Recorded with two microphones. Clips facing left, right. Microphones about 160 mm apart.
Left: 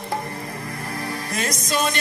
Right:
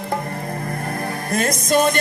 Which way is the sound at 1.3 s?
55° right (ahead or behind).